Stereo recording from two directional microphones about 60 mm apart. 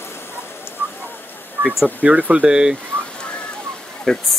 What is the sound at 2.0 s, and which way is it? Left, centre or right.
Speech, right.